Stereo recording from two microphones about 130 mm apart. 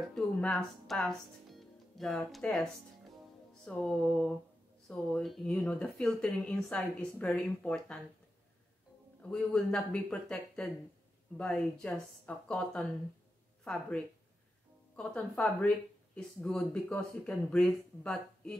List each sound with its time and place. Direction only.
0.1 s speech: 5° left (ahead or behind)
9.2 s speech: 5° left (ahead or behind)